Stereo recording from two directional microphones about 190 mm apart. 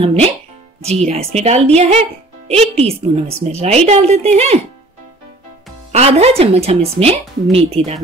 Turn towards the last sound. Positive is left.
turn(degrees=-30)  # may be behind; listen again after turning